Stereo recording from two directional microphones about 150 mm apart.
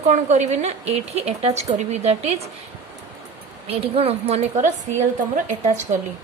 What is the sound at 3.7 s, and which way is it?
A woman's voice, 40° right (ahead or behind).